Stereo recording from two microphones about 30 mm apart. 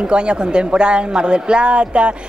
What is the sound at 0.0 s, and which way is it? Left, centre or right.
Speech, right.